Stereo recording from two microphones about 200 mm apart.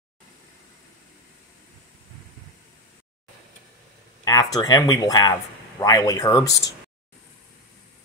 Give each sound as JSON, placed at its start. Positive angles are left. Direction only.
{"t": 4.2, "sound": "speech", "side_deg": 20}